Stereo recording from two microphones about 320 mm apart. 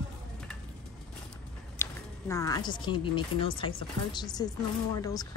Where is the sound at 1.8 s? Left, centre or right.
Centre.